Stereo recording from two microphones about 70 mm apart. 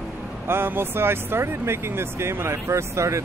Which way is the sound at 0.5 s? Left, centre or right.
Right.